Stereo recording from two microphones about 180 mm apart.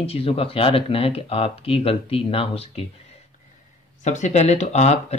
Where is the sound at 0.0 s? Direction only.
35° left (ahead or behind).